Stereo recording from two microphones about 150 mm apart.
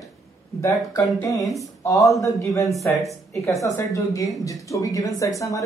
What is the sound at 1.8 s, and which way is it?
Speech, 20° left (ahead or behind).